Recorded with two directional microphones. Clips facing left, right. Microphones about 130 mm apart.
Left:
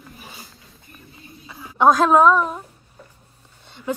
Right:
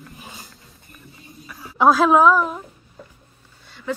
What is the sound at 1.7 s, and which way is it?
Speech, 5° right (ahead or behind).